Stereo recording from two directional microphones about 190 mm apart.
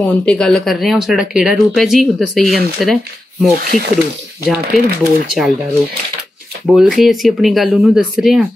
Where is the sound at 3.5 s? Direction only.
55° right (ahead or behind).